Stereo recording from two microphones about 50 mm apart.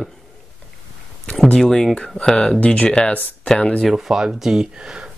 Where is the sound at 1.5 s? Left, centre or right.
Centre.